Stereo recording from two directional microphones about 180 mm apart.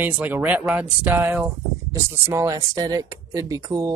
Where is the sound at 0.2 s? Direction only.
10° right (ahead or behind).